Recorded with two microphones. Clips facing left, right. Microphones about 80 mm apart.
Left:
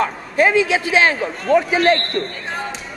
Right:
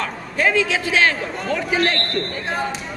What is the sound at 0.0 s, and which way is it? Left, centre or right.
A man's voice, centre.